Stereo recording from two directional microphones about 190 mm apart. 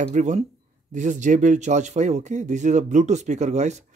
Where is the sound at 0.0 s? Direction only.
40° right (ahead or behind).